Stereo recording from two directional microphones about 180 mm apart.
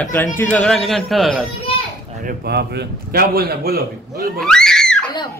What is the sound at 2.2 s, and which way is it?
A man's voice, 65° right (ahead or behind).